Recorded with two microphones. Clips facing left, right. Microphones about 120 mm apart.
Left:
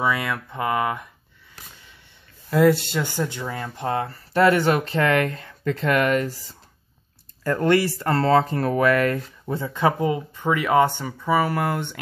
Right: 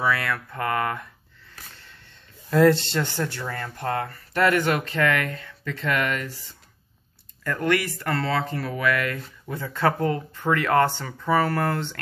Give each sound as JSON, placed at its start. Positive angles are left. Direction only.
{"t": 0.0, "sound": "speech", "side_deg": 15}
{"t": 1.6, "sound": "a sound", "side_deg": 10}
{"t": 2.5, "sound": "speech", "side_deg": 5}
{"t": 9.6, "sound": "speech", "side_deg": 15}